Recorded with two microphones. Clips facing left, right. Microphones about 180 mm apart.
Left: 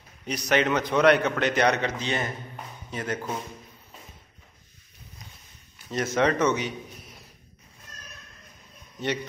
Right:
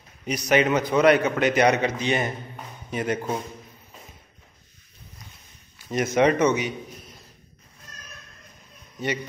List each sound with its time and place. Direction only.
0.3 s a man's voice: 10° right (ahead or behind)
5.9 s a man's voice: 15° right (ahead or behind)